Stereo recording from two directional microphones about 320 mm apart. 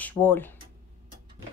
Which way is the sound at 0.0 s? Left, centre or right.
Centre.